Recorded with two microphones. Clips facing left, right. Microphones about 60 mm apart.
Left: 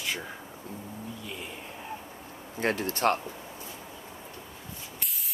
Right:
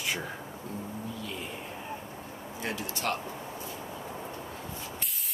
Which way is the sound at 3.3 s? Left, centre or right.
Right.